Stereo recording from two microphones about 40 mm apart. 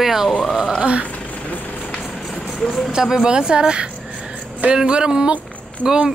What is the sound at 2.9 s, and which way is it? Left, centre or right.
Speech, centre.